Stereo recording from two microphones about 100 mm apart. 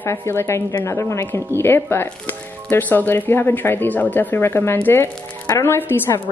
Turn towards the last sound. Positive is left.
turn(degrees=20)  # may be behind; listen again after turning